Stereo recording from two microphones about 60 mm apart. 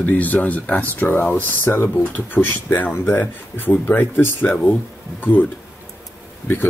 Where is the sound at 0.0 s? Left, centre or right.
Left.